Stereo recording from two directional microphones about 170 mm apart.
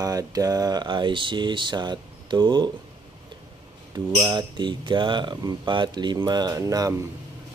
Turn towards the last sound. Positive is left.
turn(degrees=-20)  # may be behind; listen again after turning